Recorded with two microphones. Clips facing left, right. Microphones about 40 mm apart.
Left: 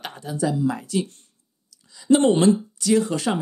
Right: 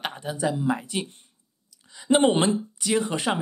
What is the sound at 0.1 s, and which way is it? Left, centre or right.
Speech, right.